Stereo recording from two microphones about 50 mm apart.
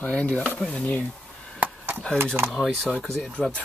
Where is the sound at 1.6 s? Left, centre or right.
Right.